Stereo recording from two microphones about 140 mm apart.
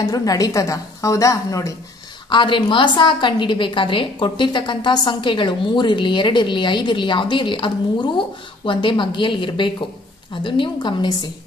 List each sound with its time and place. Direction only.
0.0 s a woman's voice: 25° left (ahead or behind)
2.2 s a woman's voice: 35° left (ahead or behind)